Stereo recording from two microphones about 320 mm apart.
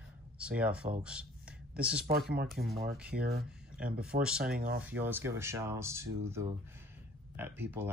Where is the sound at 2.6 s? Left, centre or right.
Right.